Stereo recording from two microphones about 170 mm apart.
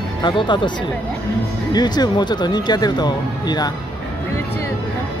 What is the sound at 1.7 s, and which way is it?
Speech, 25° left (ahead or behind).